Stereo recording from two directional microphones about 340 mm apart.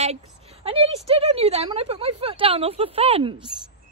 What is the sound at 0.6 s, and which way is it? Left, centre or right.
Speech, centre.